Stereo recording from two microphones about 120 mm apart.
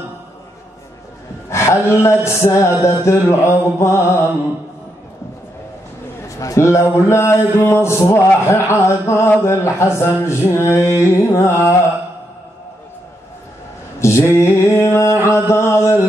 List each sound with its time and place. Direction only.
1.5 s a man's voice: 25° left (ahead or behind)
6.2 s a man's voice: 25° left (ahead or behind)
13.9 s a man's voice: 25° left (ahead or behind)